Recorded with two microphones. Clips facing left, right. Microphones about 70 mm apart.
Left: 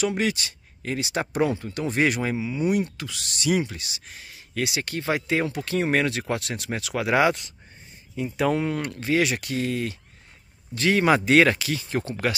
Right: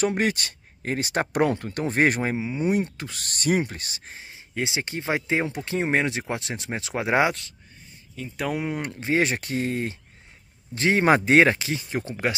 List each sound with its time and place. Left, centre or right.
0.0 s speech: right
8.4 s speech: centre
8.6 s speech: centre